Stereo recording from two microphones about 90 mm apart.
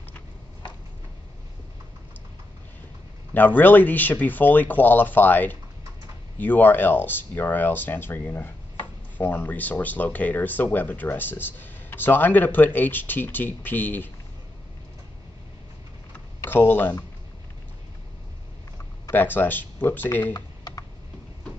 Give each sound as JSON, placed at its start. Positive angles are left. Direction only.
{"t": 3.3, "sound": "speech", "side_deg": 20}
{"t": 16.4, "sound": "speech", "side_deg": 25}
{"t": 19.1, "sound": "speech", "side_deg": 20}
{"t": 20.3, "sound": "typing", "side_deg": 45}